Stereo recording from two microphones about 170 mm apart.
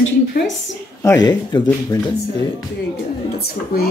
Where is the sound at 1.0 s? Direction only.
25° left (ahead or behind).